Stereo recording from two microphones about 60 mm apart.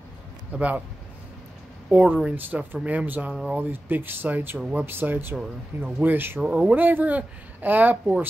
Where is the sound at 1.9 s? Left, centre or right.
Right.